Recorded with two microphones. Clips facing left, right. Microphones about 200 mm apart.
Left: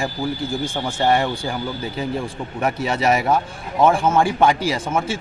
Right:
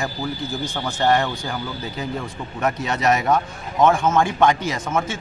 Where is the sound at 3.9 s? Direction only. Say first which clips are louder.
Left 1 dB; 30° left (ahead or behind).